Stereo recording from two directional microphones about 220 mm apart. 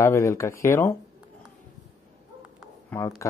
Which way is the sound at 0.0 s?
10° left (ahead or behind).